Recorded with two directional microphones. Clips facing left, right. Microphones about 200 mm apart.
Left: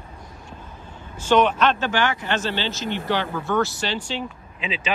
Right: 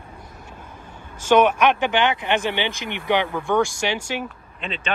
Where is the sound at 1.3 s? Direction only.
10° right (ahead or behind).